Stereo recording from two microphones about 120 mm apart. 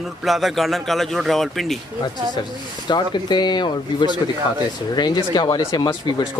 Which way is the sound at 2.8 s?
40° left (ahead or behind).